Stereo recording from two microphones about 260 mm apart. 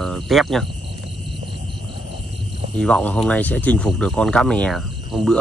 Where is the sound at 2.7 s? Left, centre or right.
Centre.